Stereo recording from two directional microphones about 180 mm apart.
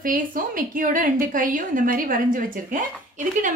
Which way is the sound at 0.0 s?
50° right (ahead or behind).